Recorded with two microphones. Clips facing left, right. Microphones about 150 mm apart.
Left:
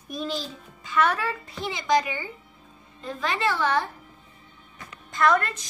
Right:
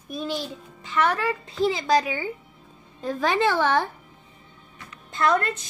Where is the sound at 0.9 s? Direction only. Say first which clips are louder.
Right 1 dB; 15° right (ahead or behind).